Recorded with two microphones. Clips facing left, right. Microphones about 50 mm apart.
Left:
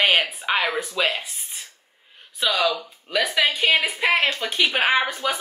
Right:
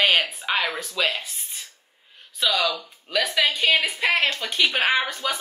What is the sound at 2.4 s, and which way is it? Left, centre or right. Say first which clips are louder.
Speech: left 1 dB; centre.